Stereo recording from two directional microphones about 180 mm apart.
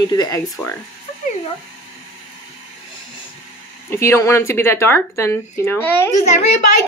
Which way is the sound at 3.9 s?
15° left (ahead or behind).